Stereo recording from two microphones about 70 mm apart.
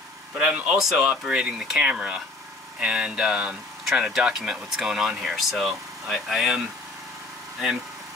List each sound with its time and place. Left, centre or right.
0.7 s speech: centre